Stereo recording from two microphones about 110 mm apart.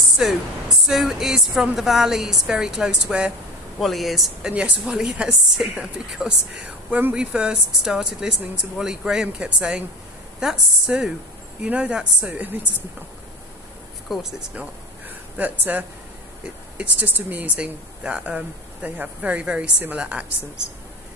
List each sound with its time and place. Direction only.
0.2 s a woman's voice: 5° right (ahead or behind)
14.0 s a woman's voice: centre (ahead or behind)
14.5 s a sound: 15° right (ahead or behind)
16.7 s a woman's voice: 15° right (ahead or behind)